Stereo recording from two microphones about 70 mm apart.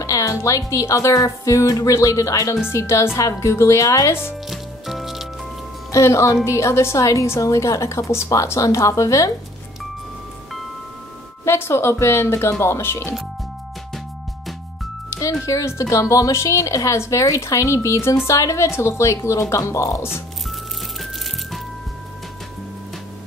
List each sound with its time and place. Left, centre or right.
0.0 s speech: left
2.7 s speech: left
4.5 s music: centre
5.9 s speech: left
11.4 s speech: left
15.0 s music: left
15.4 s speech: left